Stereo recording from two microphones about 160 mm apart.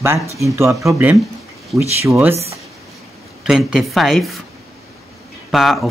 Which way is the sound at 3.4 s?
5° right (ahead or behind).